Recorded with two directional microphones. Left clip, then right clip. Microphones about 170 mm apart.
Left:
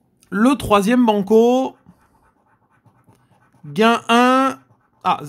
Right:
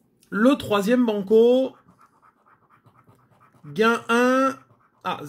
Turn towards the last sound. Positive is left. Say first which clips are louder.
# left 10 dB
turn(degrees=45)  # may be behind; listen again after turning